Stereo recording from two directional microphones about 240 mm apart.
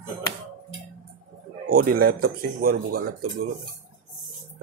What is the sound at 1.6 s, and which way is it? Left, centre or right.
Speech, right.